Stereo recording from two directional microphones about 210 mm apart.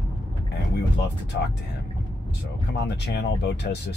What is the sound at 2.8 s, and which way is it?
Speech, 55° left (ahead or behind).